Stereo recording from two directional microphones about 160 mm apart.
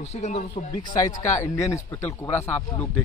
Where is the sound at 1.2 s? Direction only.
20° left (ahead or behind).